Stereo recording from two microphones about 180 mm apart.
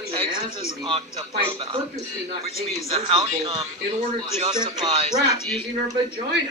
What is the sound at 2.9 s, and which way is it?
A man's voice, 30° right (ahead or behind).